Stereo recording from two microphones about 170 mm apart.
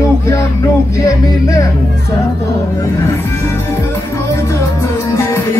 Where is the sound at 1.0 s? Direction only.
20° left (ahead or behind).